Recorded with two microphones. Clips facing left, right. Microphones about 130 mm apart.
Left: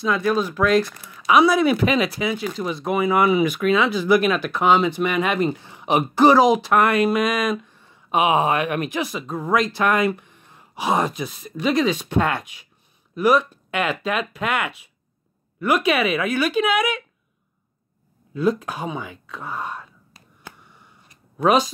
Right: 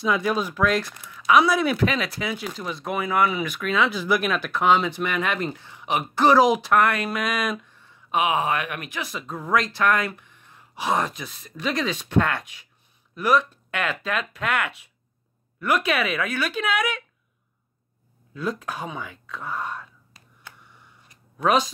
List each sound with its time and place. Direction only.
0.0 s speech: 10° right (ahead or behind)
0.6 s speech: centre (ahead or behind)
5.8 s a sound: 25° left (ahead or behind)
6.1 s speech: 5° left (ahead or behind)
6.4 s speech: 5° right (ahead or behind)
6.7 s speech: 10° left (ahead or behind)
7.9 s speech: 20° left (ahead or behind)
9.0 s speech: 5° left (ahead or behind)
10.2 s gasp: 20° left (ahead or behind)
10.8 s speech: 10° left (ahead or behind)
18.3 s speech: 5° left (ahead or behind)
21.4 s speech: 5° left (ahead or behind)